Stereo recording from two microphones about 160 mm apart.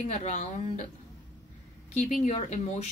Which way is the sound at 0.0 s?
45° left (ahead or behind).